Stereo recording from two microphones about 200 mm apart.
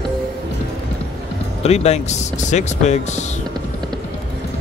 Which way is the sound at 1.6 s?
30° left (ahead or behind).